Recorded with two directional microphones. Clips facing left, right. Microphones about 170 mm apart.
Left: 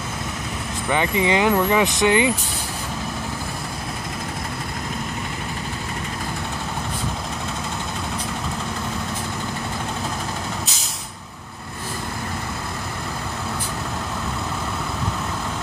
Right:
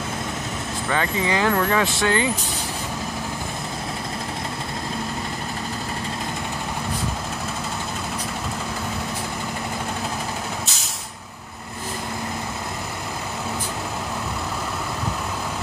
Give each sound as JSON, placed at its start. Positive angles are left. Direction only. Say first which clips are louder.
{"t": 0.8, "sound": "speech", "louder": "left 3 dB", "side_deg": 15}